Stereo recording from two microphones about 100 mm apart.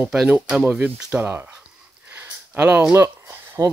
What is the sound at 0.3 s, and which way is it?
Speech, 10° right (ahead or behind).